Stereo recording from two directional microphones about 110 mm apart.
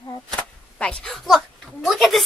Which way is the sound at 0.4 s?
10° left (ahead or behind).